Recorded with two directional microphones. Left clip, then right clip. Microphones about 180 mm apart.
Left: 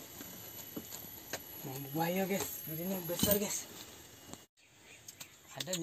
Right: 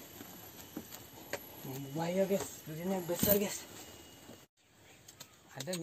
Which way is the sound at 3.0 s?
35° right (ahead or behind).